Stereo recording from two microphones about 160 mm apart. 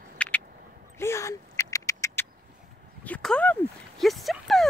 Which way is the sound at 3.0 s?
10° left (ahead or behind).